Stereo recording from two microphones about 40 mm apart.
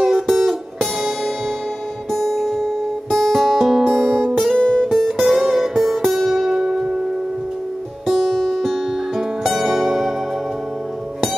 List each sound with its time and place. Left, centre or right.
0.0 s music: centre
4.6 s guitar: left
4.8 s music: centre
8.1 s music: centre